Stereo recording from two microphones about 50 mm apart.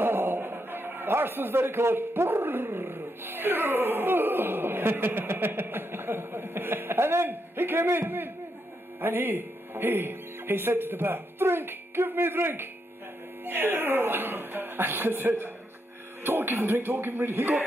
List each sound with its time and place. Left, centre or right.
0.0 s a man's voice: right